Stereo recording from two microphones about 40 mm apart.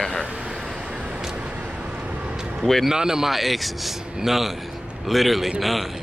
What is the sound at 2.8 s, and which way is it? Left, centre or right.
Speech, centre.